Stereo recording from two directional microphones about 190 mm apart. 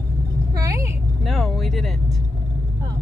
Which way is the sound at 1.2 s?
Centre (ahead or behind).